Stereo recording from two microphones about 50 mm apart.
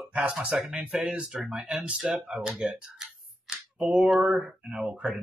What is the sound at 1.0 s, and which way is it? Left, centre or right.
Speech, right.